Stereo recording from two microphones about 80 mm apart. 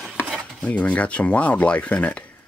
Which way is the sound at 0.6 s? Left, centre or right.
Centre.